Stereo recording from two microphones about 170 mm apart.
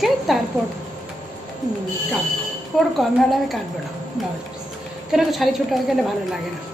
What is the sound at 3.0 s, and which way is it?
Speech, centre (ahead or behind).